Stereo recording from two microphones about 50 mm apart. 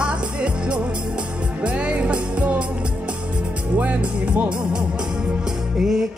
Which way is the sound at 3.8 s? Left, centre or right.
Right.